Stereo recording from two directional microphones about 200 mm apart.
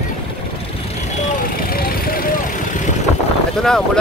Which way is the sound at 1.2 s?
45° left (ahead or behind).